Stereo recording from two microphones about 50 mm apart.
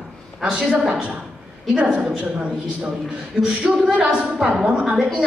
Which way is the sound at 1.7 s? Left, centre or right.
Right.